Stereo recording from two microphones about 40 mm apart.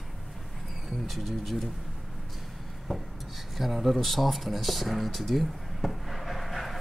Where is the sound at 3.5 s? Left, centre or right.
Centre.